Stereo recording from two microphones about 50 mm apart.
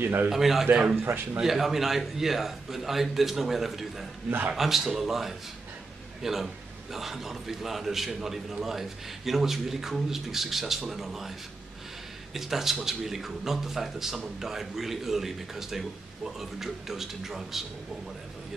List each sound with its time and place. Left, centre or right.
0.0 s a man's voice: right
0.3 s a man's voice: centre
12.4 s a man's voice: centre